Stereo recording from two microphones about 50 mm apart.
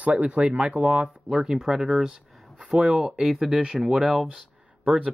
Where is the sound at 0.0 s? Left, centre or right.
Right.